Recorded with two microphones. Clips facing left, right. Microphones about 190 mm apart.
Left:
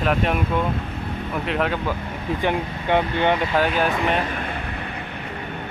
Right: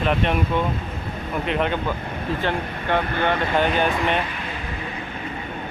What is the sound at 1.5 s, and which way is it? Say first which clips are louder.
Speech: even; centre (ahead or behind).